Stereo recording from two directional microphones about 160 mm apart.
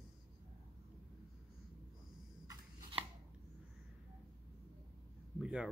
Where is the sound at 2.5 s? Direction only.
30° right (ahead or behind).